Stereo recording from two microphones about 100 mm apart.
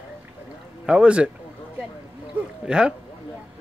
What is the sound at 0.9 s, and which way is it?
Speech, 10° right (ahead or behind).